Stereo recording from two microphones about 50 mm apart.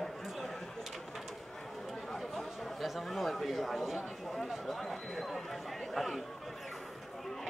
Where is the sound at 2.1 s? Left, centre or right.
Centre.